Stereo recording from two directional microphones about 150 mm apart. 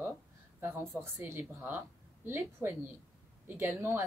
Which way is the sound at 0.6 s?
15° right (ahead or behind).